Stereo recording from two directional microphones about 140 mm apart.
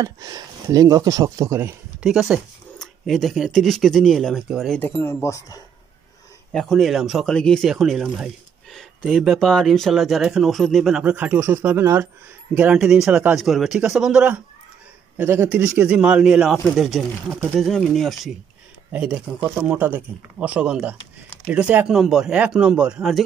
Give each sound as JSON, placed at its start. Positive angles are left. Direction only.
{"t": 0.0, "sound": "speech", "side_deg": -25}
{"t": 2.0, "sound": "speech", "side_deg": -5}
{"t": 4.7, "sound": "speech", "side_deg": 15}
{"t": 6.5, "sound": "speech", "side_deg": 0}
{"t": 12.5, "sound": "speech", "side_deg": -5}
{"t": 15.1, "sound": "speech", "side_deg": -15}